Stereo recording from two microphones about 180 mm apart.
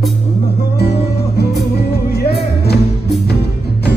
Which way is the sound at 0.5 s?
65° left (ahead or behind).